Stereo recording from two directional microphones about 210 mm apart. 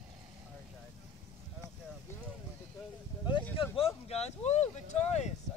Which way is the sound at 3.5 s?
25° left (ahead or behind).